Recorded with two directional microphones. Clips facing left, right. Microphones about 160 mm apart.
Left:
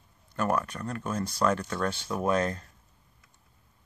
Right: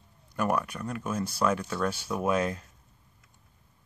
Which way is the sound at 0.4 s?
10° right (ahead or behind).